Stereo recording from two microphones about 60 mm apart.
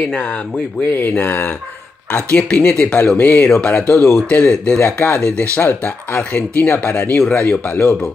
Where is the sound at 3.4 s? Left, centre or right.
Left.